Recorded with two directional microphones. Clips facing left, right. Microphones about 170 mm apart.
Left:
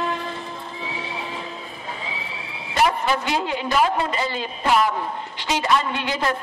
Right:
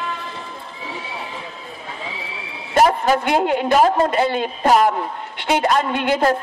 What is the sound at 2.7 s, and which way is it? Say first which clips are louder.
A woman's voice: right 5 dB; 45° right (ahead or behind).